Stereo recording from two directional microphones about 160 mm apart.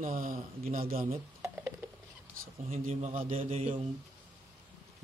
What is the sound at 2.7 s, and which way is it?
A man's voice, 40° right (ahead or behind).